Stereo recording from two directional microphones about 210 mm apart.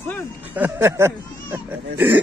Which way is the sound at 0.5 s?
10° right (ahead or behind).